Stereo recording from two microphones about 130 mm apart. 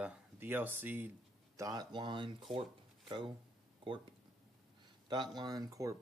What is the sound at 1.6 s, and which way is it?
Speech, 30° right (ahead or behind).